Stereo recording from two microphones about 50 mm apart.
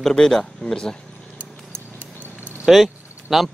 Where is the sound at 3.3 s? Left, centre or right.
Centre.